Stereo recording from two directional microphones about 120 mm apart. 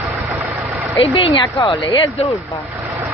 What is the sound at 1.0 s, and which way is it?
A woman's voice, 45° left (ahead or behind).